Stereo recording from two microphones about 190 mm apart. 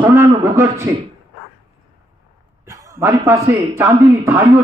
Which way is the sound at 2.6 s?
15° right (ahead or behind).